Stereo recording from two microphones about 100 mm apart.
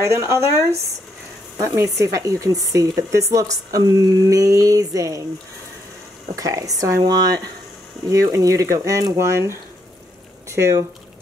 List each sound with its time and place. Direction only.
0.0 s speech: 30° right (ahead or behind)
6.3 s speech: 35° right (ahead or behind)